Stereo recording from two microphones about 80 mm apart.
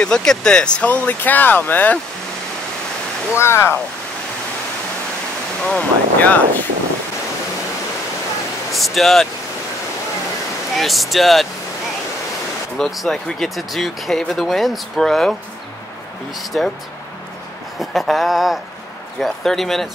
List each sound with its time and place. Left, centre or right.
0.0 s speech: centre
3.3 s speech: left
5.7 s speech: centre
8.7 s speech: centre
10.8 s speech: centre
12.7 s speech: centre
16.3 s speech: centre
17.7 s speech: centre